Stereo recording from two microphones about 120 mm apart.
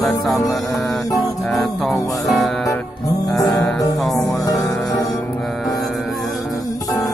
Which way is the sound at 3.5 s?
30° left (ahead or behind).